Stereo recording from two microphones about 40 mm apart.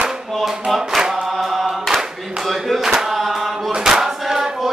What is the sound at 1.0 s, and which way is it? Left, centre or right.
Choir, centre.